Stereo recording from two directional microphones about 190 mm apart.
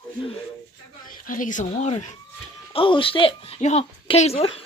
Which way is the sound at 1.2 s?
45° left (ahead or behind).